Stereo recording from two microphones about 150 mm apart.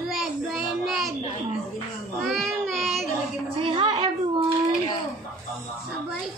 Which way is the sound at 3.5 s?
35° right (ahead or behind).